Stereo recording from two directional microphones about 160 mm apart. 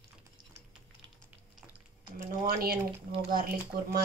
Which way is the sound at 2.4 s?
70° right (ahead or behind).